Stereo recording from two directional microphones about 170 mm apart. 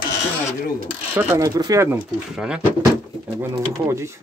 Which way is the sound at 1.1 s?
10° right (ahead or behind).